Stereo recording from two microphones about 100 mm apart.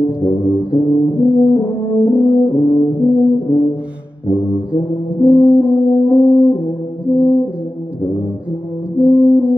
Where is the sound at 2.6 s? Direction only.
25° left (ahead or behind).